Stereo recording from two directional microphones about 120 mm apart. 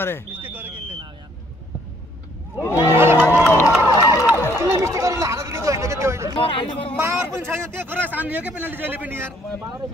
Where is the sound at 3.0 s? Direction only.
20° right (ahead or behind).